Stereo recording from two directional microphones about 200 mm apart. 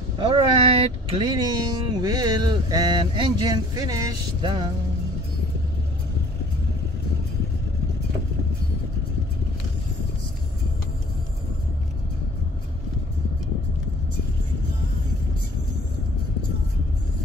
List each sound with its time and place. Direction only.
0.2 s speech: 25° right (ahead or behind)